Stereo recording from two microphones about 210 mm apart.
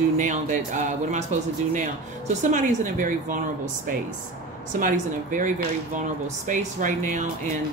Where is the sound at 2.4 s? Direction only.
35° right (ahead or behind).